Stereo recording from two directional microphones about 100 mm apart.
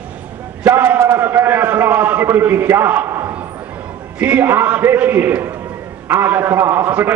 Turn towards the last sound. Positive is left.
turn(degrees=-15)  # may be behind; listen again after turning